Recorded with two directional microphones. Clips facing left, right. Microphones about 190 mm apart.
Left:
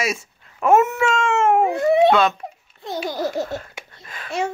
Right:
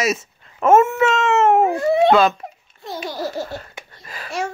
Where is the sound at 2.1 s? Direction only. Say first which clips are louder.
Right 3 dB; centre (ahead or behind).